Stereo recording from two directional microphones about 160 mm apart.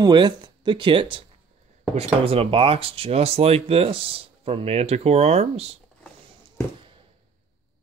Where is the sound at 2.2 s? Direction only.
35° right (ahead or behind).